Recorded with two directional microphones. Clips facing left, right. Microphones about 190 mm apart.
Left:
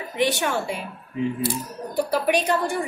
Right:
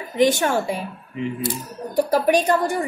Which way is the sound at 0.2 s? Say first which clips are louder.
Right 5 dB; 45° right (ahead or behind).